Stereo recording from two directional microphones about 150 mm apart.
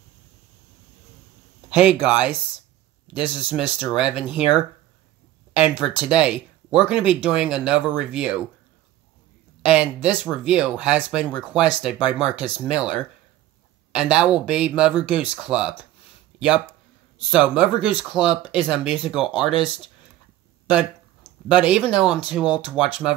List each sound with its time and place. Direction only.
1.8 s speech: 5° right (ahead or behind)
5.6 s speech: 5° right (ahead or behind)
9.7 s speech: 5° right (ahead or behind)
21.5 s speech: 5° right (ahead or behind)